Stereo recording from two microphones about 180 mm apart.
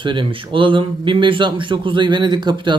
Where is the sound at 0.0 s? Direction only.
25° right (ahead or behind).